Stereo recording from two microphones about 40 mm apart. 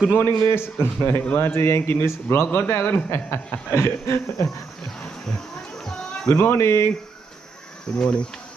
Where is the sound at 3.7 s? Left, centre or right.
Left.